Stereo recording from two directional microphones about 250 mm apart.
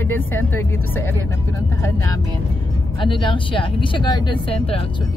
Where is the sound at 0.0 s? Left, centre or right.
Centre.